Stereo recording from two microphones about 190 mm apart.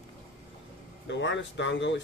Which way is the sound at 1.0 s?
70° left (ahead or behind).